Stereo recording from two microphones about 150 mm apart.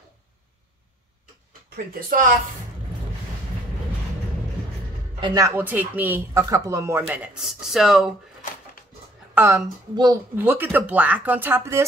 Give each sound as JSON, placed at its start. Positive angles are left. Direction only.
{"t": 2.0, "sound": "speech", "side_deg": -65}
{"t": 5.2, "sound": "a woman's voice", "side_deg": -25}
{"t": 5.6, "sound": "speech", "side_deg": -10}
{"t": 9.3, "sound": "a woman's voice", "side_deg": -20}